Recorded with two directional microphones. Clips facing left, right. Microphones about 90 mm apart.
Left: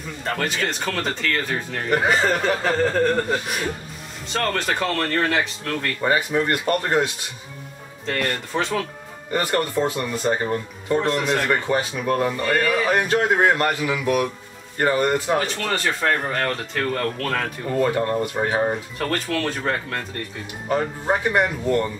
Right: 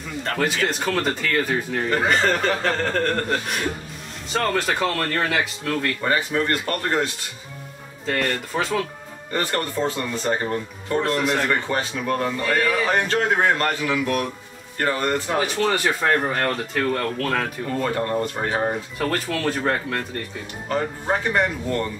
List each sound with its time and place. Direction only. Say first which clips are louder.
0.2 s speech: right 2 dB; centre (ahead or behind)
1.9 s speech: left 2 dB; 10° left (ahead or behind)
6.0 s a man's voice: left 3 dB; 20° left (ahead or behind)
8.1 s speech: right 1 dB; centre (ahead or behind)
9.3 s a man's voice: left 3 dB; 10° left (ahead or behind)
15.3 s speech: right 2 dB; 5° right (ahead or behind)
17.8 s a man's voice: even; 10° left (ahead or behind)
18.7 s speech: even; 5° right (ahead or behind)
20.6 s a man's voice: left 2 dB; 15° left (ahead or behind)